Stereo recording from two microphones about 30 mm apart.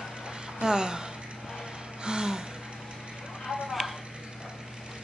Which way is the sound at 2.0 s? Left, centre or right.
Right.